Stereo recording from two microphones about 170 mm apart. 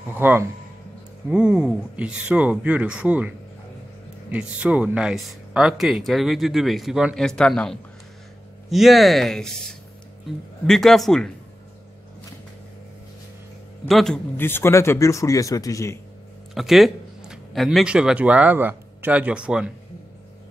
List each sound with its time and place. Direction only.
0.1 s speech: 10° right (ahead or behind)
10.7 s speech: centre (ahead or behind)
13.8 s speech: centre (ahead or behind); by 16.0 s 20° left (ahead or behind)
16.5 s speech: centre (ahead or behind)